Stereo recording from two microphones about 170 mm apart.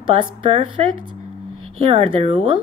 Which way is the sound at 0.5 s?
30° right (ahead or behind).